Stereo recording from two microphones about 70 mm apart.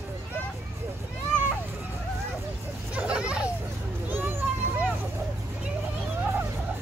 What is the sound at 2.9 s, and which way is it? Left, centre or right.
Vehicle, centre.